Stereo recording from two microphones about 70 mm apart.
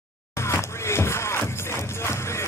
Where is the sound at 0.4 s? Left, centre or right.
Left.